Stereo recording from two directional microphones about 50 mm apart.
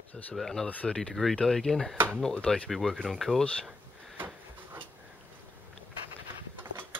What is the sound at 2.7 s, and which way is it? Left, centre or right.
Speech, centre.